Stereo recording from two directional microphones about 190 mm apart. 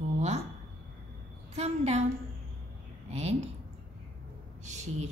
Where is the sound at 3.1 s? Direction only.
35° right (ahead or behind).